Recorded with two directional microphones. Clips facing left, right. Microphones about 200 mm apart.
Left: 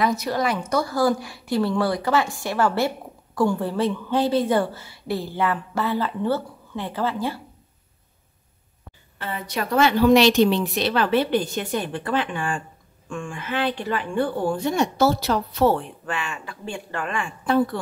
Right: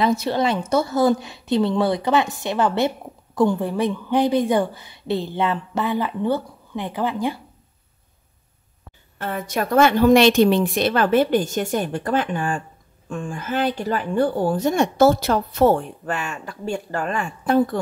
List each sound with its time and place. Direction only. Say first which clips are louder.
0.0 s a woman's voice: right 3 dB; 25° right (ahead or behind)
9.2 s speech: right 4 dB; 45° right (ahead or behind)